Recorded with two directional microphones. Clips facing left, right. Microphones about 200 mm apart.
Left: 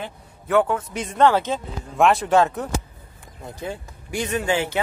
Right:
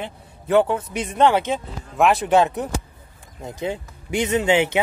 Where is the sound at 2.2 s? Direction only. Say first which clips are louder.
Right 1 dB; 15° right (ahead or behind).